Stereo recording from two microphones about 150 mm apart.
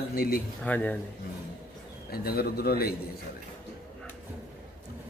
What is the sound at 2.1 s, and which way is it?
Speech, 90° left.